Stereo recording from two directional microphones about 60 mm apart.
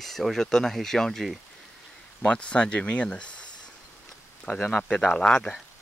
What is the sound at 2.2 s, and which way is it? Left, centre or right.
Speech, centre.